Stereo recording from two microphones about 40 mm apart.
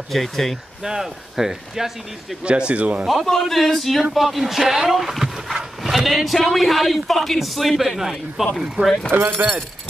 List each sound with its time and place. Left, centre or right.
0.1 s speech: centre
0.8 s speech: centre
2.4 s speech: right
3.3 s speech: centre
8.8 s speech: right